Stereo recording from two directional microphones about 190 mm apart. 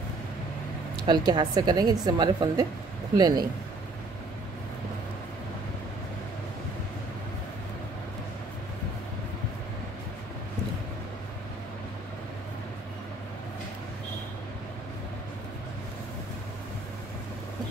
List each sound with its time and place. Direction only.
1.0 s a woman's voice: 25° right (ahead or behind)